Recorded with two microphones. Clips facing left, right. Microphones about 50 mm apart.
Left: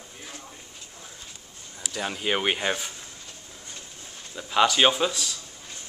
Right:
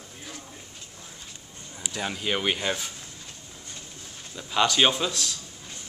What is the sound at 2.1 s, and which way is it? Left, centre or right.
Speech, centre.